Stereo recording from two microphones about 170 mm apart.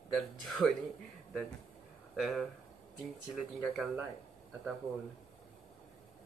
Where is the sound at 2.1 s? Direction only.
Centre (ahead or behind).